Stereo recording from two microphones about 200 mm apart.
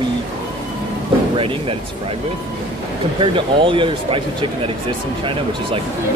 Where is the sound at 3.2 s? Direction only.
25° right (ahead or behind).